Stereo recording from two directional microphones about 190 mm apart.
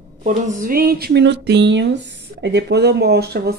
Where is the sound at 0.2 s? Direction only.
45° right (ahead or behind).